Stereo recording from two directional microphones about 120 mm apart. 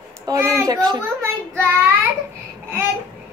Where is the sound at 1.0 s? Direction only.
20° right (ahead or behind).